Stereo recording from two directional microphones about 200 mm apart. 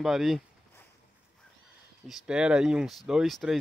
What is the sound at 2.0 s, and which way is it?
Speech, 5° right (ahead or behind).